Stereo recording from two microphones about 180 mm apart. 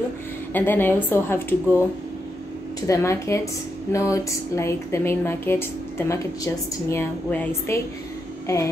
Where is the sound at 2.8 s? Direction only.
15° left (ahead or behind).